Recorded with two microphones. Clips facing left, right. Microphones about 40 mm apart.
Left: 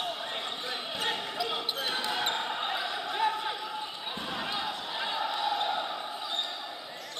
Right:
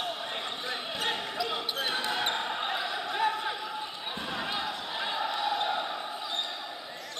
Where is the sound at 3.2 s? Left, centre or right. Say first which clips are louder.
Even; right.